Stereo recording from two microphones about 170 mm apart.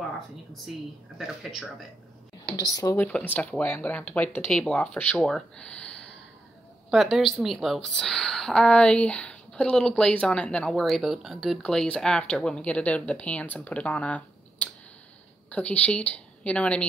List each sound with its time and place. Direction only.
1.1 s a woman's voice: centre (ahead or behind)
2.5 s speech: 20° left (ahead or behind)
3.1 s a woman's voice: 10° left (ahead or behind)